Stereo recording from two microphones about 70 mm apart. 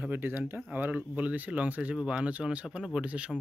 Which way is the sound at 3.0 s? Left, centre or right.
Centre.